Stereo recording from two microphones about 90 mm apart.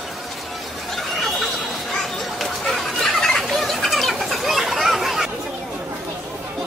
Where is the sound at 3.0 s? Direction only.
5° left (ahead or behind).